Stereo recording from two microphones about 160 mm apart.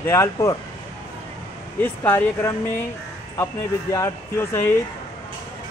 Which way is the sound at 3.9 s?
20° left (ahead or behind).